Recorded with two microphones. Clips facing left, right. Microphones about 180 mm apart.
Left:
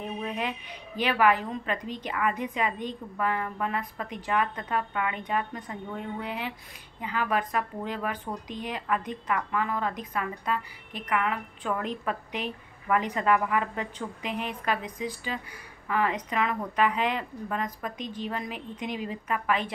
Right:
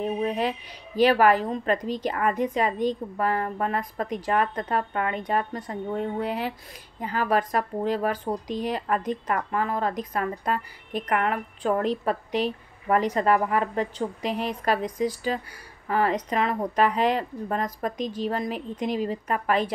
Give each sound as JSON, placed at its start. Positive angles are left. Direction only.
{"t": 0.0, "sound": "a woman's voice", "side_deg": -35}
{"t": 11.6, "sound": "a woman's voice", "side_deg": -35}